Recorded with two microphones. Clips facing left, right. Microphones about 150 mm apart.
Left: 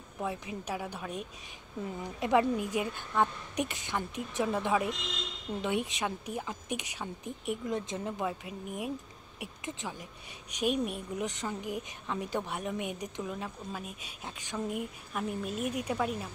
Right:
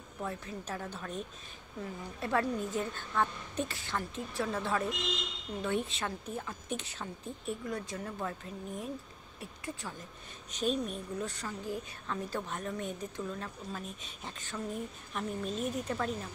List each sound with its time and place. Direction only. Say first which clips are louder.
0.2 s a woman's voice: left 3 dB; 10° left (ahead or behind)